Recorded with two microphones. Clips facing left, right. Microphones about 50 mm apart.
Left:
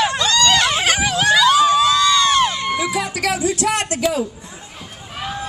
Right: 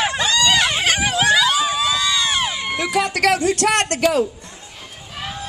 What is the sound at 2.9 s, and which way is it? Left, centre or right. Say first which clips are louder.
Speech: right 4 dB; right.